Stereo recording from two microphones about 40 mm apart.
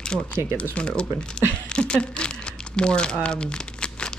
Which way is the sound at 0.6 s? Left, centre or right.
Left.